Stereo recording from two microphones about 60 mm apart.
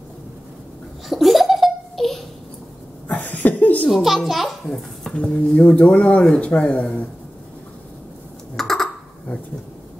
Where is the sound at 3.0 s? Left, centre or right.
Left.